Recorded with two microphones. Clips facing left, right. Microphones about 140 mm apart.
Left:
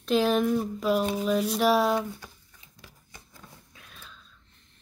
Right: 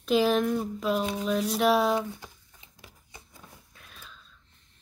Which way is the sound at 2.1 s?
20° right (ahead or behind).